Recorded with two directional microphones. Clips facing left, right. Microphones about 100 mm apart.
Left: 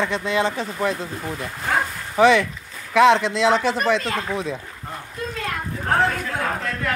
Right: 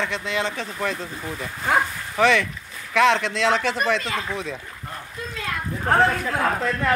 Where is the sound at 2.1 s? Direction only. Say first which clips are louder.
Left 4 dB; 5° left (ahead or behind).